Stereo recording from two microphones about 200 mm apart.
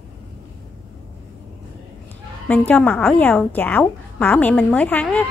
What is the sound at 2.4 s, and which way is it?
A woman's voice, 10° left (ahead or behind).